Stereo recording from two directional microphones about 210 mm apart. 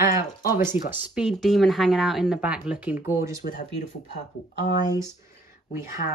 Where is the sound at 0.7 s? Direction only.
10° right (ahead or behind).